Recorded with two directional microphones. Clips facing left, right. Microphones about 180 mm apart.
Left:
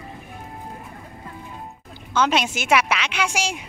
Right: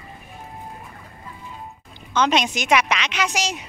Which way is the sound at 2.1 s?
5° left (ahead or behind).